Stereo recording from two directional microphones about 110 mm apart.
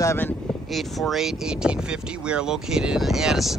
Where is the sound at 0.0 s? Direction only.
25° left (ahead or behind).